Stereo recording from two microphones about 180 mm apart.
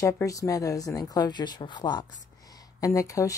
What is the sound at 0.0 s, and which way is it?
Speech, 20° left (ahead or behind).